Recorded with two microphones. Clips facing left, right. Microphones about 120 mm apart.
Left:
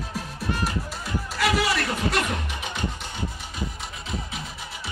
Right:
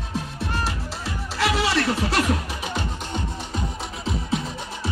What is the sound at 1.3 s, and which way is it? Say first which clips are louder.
Music: right 2 dB; 30° right (ahead or behind).